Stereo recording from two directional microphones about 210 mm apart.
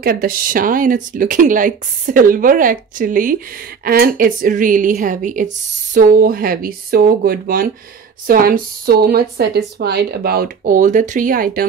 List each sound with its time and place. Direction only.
0.0 s speech: 45° right (ahead or behind)